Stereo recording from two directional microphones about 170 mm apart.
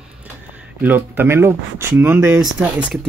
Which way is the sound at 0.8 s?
10° right (ahead or behind).